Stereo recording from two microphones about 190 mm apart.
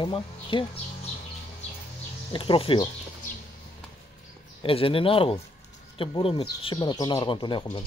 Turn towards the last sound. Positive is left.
turn(degrees=25)  # may be behind; listen again after turning